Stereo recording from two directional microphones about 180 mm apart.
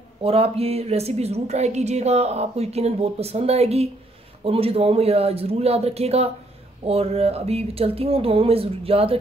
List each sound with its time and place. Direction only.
0.2 s speech: 35° right (ahead or behind)